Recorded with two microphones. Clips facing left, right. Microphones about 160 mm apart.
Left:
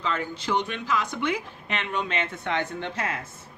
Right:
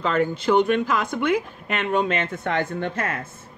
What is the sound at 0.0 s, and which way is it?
Speech, 50° right (ahead or behind).